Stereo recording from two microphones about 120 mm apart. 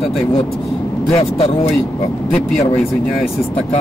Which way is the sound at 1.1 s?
55° left (ahead or behind).